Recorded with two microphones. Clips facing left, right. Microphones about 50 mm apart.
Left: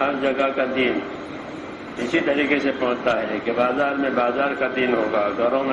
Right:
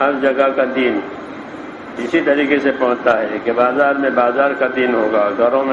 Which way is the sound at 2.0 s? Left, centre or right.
Right.